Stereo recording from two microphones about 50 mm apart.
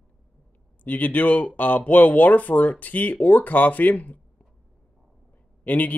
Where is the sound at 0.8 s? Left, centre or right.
Left.